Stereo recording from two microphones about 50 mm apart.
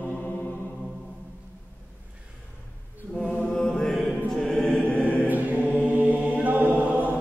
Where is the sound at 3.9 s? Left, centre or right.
Centre.